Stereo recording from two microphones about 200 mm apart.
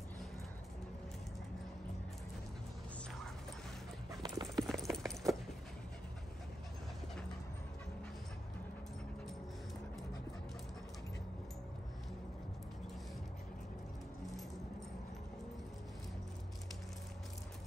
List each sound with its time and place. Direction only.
4.1 s clip-clop: 20° right (ahead or behind)
4.6 s clip-clop: centre (ahead or behind)